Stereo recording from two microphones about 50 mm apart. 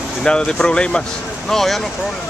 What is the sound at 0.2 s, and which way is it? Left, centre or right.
Speech, centre.